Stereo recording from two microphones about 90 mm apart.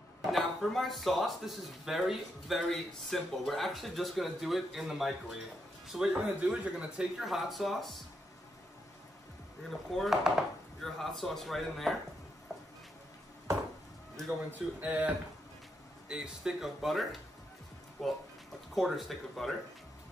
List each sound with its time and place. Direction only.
0.3 s speech: centre (ahead or behind)
9.7 s speech: centre (ahead or behind)
12.5 s a sound: centre (ahead or behind)
14.8 s speech: 15° right (ahead or behind); by 19.5 s centre (ahead or behind)